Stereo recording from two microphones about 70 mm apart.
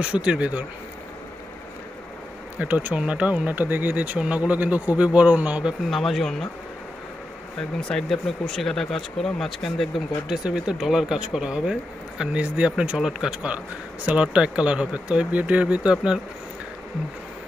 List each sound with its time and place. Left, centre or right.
0.0 s speech: centre
2.6 s speech: right
5.9 s speech: centre
7.9 s speech: centre
12.4 s speech: centre